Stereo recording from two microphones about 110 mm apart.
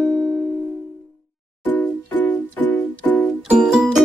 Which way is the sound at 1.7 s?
15° left (ahead or behind).